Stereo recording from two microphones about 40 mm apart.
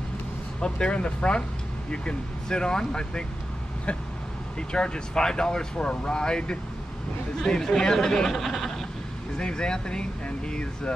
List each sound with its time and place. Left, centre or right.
0.6 s speech: left
4.6 s speech: left; by 8.8 s centre
9.4 s speech: left